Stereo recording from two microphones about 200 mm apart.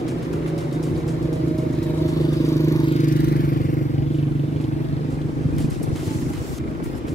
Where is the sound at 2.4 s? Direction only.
15° left (ahead or behind).